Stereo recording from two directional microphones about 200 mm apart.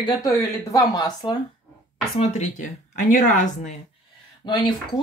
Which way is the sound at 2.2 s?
35° left (ahead or behind).